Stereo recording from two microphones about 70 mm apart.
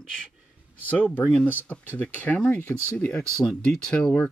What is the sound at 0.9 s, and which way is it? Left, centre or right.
Speech, left.